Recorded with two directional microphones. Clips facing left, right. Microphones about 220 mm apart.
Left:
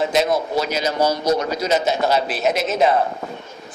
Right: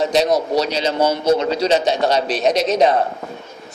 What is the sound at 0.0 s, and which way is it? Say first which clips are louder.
A man's voice: right 2 dB; 35° right (ahead or behind).